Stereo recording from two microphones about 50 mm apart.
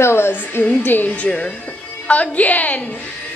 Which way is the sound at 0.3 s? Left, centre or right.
Left.